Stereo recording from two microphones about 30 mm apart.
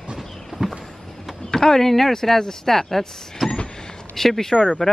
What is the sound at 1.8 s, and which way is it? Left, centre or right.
Speech, centre.